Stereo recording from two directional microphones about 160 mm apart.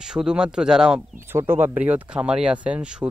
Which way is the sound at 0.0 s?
5° right (ahead or behind).